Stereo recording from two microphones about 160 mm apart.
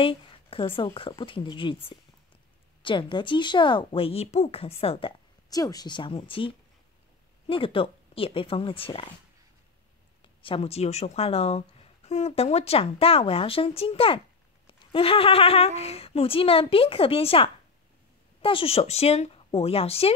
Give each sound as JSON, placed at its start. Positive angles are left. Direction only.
{"t": 0.0, "sound": "a woman's voice", "side_deg": 35}
{"t": 2.8, "sound": "a woman's voice", "side_deg": 30}
{"t": 5.5, "sound": "a woman's voice", "side_deg": 25}
{"t": 10.4, "sound": "a woman's voice", "side_deg": 35}